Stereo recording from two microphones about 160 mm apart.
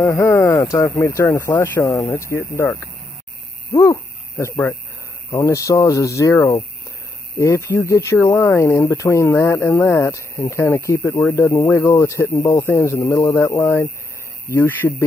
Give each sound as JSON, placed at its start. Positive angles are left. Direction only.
{"t": 0.2, "sound": "speech", "side_deg": 15}